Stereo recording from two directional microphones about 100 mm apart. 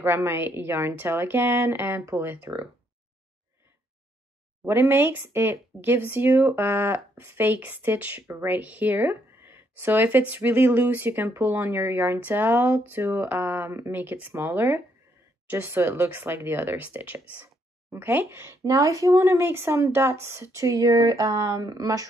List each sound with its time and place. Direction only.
0.0 s speech: 25° right (ahead or behind)
4.6 s speech: 20° right (ahead or behind)
18.6 s speech: 35° right (ahead or behind)